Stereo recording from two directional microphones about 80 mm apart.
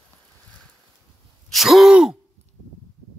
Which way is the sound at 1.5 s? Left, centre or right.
Centre.